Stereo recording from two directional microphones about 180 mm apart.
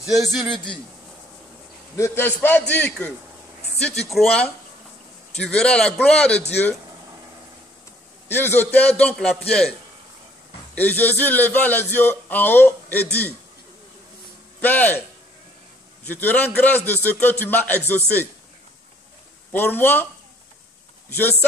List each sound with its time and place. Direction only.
0.3 s a man's voice: centre (ahead or behind)
2.0 s a man's voice: 15° left (ahead or behind)
8.3 s a man's voice: 10° left (ahead or behind)
14.6 s a man's voice: 10° left (ahead or behind)
16.1 s a man's voice: 10° left (ahead or behind)
19.5 s a man's voice: 10° left (ahead or behind)
21.1 s a man's voice: 10° left (ahead or behind)